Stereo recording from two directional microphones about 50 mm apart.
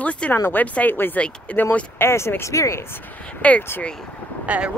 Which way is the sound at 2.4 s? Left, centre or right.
Left.